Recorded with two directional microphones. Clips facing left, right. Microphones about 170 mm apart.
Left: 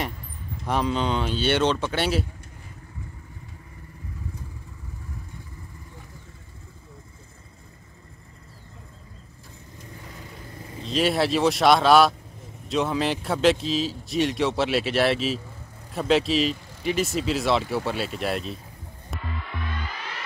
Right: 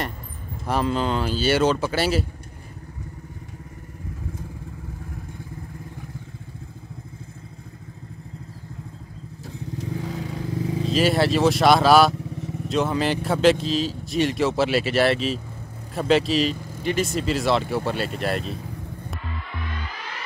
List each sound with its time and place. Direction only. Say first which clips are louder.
0.7 s speech: right 1 dB; centre (ahead or behind)
9.8 s vehicle: right 13 dB; 90° right
10.9 s speech: right 2 dB; centre (ahead or behind)